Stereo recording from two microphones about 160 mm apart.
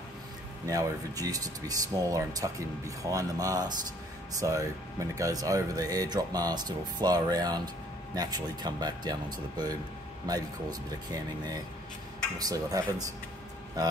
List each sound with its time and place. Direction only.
0.7 s speech: 20° right (ahead or behind)
10.2 s speech: 25° right (ahead or behind)